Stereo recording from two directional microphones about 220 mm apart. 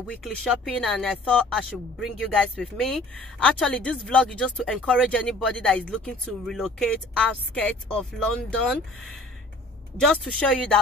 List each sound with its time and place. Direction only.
0.0 s a woman's voice: centre (ahead or behind)